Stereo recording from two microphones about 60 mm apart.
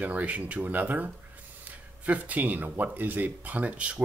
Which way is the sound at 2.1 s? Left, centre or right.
Right.